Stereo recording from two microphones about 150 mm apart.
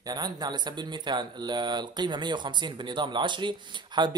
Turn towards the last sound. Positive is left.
turn(degrees=-30)  # may be behind; listen again after turning